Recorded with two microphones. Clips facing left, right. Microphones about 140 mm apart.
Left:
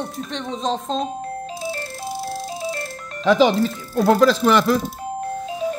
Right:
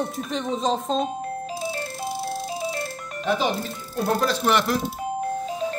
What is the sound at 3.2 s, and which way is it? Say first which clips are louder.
Speech: left 8 dB; 90° left.